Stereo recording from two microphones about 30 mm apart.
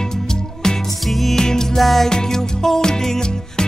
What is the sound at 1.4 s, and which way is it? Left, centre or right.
Music, centre.